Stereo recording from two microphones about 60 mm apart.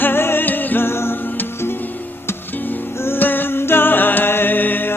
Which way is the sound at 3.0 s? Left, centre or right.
Left.